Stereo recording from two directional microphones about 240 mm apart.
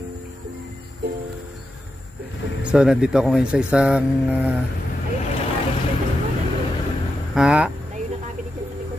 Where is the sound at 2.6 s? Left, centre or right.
Centre.